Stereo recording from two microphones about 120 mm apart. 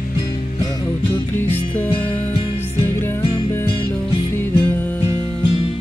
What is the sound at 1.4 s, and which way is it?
Music, 15° left (ahead or behind).